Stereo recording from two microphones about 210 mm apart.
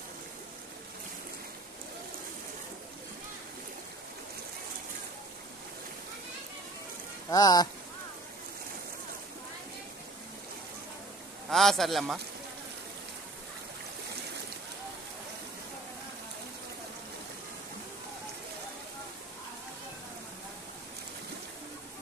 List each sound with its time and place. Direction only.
7.2 s speech: 15° left (ahead or behind)
11.5 s a man's voice: centre (ahead or behind)